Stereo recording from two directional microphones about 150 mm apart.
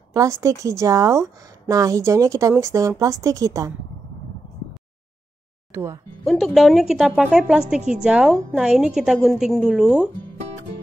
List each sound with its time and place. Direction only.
0.1 s a woman's voice: 20° right (ahead or behind)
5.7 s speech: 15° right (ahead or behind)
6.2 s a woman's voice: centre (ahead or behind)